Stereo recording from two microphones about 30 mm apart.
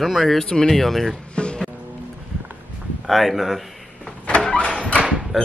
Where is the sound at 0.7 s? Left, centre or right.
Centre.